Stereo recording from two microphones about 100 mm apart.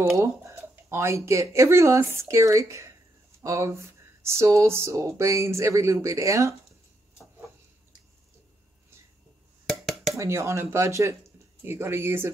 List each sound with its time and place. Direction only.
0.0 s speech: 30° right (ahead or behind)
10.1 s speech: 30° right (ahead or behind)